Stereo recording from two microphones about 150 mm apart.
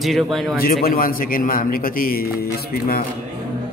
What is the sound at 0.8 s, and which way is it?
A man's voice, 75° left (ahead or behind).